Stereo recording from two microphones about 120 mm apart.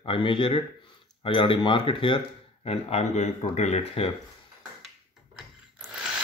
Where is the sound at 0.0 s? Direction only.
45° left (ahead or behind).